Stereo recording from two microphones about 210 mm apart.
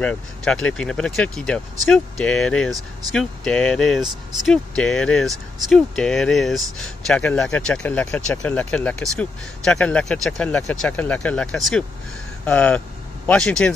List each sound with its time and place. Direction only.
0.0 s speech: 5° left (ahead or behind)